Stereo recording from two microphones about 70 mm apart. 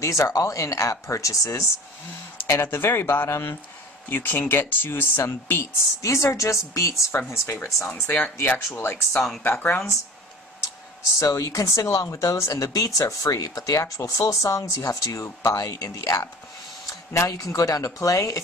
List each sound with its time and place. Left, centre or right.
0.0 s speech: left
2.4 s speech: left
7.1 s speech: left
7.9 s speech: left
8.6 s speech: left
11.1 s speech: left